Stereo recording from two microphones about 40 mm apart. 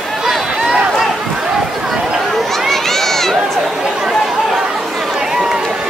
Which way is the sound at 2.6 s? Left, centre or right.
Centre.